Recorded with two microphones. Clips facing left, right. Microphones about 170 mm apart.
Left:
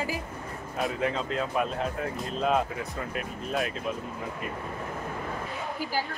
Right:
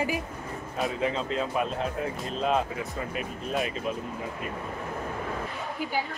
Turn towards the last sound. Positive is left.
turn(degrees=0)  # may be behind; listen again after turning